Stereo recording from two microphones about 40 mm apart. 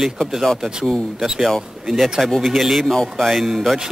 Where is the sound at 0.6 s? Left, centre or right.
Centre.